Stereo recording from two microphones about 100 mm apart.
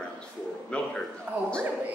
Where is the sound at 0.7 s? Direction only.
10° left (ahead or behind).